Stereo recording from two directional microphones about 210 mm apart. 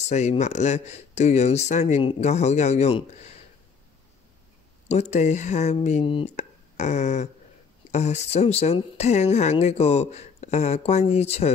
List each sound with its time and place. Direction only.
0.1 s speech: 35° left (ahead or behind)
4.8 s speech: 35° left (ahead or behind)